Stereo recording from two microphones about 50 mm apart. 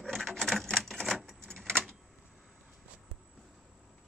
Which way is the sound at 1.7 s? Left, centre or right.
Centre.